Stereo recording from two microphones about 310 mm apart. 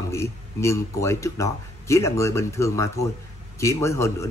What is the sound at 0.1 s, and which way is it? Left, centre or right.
Speech, centre.